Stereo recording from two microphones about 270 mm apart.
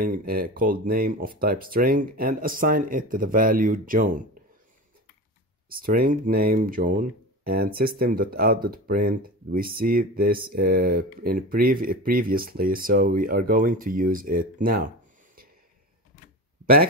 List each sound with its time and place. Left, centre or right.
0.0 s speech: right
5.8 s speech: right